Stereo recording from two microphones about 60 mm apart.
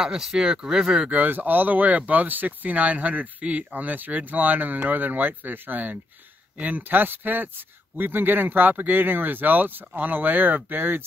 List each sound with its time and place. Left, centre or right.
0.0 s speech: centre
1.1 s speech: right